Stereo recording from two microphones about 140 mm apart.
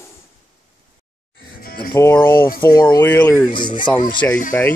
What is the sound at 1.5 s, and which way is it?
Music, 90° left.